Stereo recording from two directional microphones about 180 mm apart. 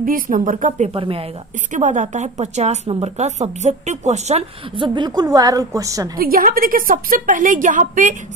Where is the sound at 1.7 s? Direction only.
45° right (ahead or behind); by 6.0 s 20° right (ahead or behind).